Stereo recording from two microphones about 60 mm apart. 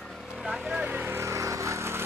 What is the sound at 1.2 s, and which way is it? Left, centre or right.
Vehicle, right.